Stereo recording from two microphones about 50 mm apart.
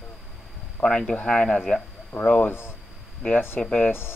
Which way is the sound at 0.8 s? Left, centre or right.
Centre.